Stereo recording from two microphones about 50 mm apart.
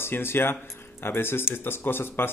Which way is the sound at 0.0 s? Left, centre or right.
Left.